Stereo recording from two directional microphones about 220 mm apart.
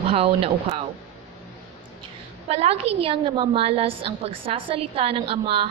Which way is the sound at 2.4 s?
30° right (ahead or behind).